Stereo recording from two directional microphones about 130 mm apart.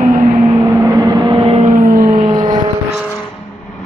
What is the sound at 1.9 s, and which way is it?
Vehicle, 25° right (ahead or behind).